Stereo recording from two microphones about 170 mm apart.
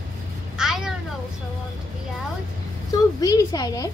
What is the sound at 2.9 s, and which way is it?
Speech, 20° left (ahead or behind).